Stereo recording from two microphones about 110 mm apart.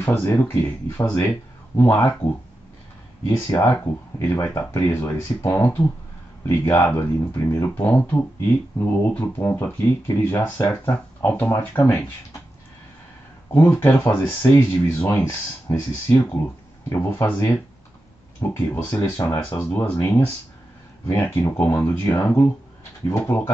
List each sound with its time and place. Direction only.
0.0 s speech: 20° left (ahead or behind)
3.3 s speech: 20° left (ahead or behind)
13.5 s speech: 20° left (ahead or behind)
18.4 s speech: 20° left (ahead or behind)
21.1 s speech: 20° left (ahead or behind)